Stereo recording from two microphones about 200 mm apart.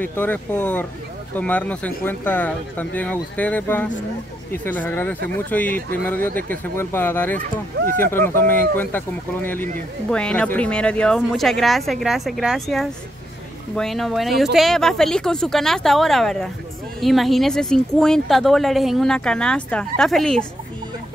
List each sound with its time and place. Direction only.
0.0 s a woman's voice: 10° left (ahead or behind)